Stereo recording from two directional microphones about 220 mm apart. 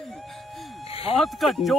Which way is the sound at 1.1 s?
Centre (ahead or behind).